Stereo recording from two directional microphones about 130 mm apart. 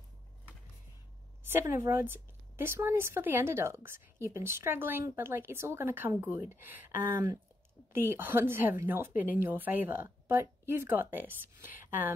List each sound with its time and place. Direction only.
1.5 s a woman's voice: 20° right (ahead or behind)